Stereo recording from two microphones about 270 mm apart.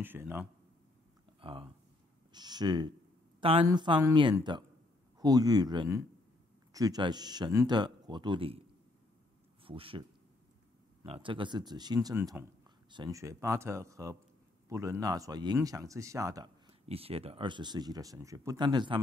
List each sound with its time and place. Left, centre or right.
0.0 s speech: centre
1.4 s speech: centre
9.7 s a man's voice: centre
11.1 s speech: centre